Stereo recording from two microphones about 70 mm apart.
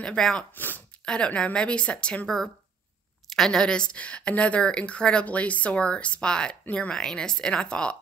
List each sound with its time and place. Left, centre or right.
0.0 s speech: centre
0.6 s a sound: left
1.0 s speech: centre
3.3 s speech: centre